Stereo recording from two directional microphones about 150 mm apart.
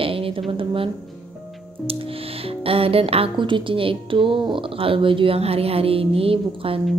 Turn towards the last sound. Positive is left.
turn(degrees=-40)  # may be behind; listen again after turning